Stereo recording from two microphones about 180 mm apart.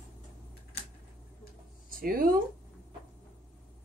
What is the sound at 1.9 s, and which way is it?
Speech, 55° right (ahead or behind).